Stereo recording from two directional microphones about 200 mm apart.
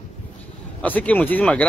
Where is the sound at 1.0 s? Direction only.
10° left (ahead or behind).